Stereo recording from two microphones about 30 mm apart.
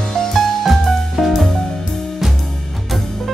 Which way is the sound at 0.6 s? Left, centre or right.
Centre.